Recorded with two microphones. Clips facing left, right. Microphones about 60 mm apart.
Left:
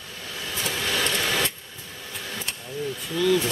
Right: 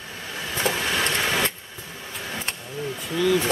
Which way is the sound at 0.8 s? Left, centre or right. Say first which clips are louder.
Right 2 dB; right.